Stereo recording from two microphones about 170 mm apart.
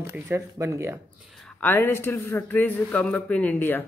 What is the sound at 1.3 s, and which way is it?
Speech, 5° left (ahead or behind).